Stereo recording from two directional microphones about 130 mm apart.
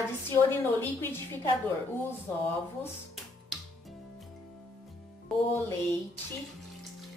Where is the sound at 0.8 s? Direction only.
15° left (ahead or behind).